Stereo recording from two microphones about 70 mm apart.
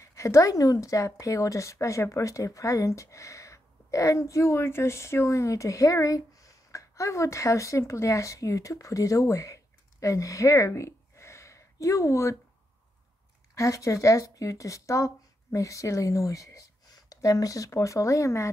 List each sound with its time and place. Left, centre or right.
0.0 s a woman's voice: left
13.6 s speech: left